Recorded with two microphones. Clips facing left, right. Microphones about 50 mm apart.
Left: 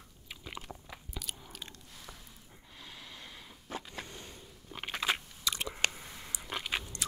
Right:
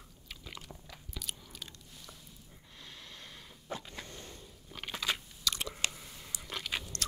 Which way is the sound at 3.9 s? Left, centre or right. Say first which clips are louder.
Left 2 dB; left.